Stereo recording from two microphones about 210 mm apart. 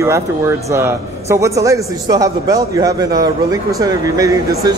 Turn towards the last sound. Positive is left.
turn(degrees=-15)  # may be behind; listen again after turning